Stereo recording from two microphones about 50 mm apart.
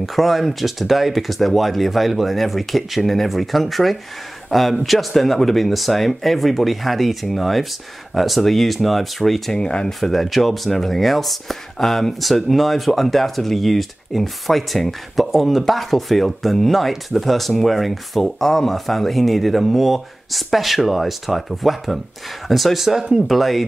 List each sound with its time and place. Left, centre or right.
0.0 s a man's voice: centre
9.6 s speech: centre
9.8 s speech: centre